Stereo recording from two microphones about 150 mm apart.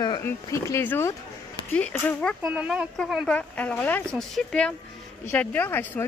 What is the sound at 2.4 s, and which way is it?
A woman's voice, 10° right (ahead or behind).